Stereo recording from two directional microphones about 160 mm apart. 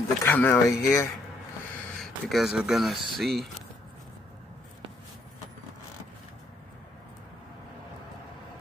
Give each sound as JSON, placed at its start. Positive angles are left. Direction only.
{"t": 0.2, "sound": "speech", "side_deg": 15}
{"t": 2.0, "sound": "speech", "side_deg": 0}